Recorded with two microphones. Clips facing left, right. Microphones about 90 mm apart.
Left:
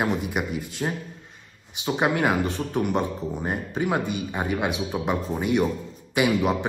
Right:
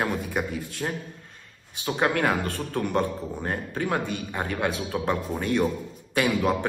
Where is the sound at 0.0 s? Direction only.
15° left (ahead or behind).